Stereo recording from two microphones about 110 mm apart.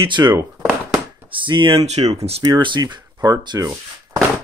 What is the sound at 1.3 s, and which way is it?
Speech, 50° right (ahead or behind).